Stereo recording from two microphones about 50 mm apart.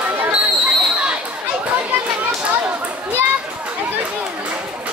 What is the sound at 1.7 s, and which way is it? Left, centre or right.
Chatter, right.